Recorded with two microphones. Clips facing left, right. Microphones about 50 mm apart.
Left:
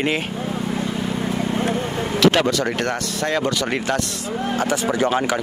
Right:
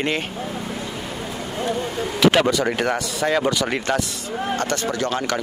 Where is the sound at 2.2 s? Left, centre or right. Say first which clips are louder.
Right 1 dB; centre.